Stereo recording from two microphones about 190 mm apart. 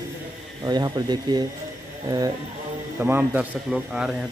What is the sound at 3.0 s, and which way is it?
Speech, 10° right (ahead or behind).